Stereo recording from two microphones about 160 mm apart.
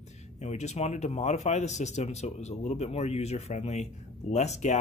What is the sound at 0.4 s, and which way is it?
Speech, 45° left (ahead or behind).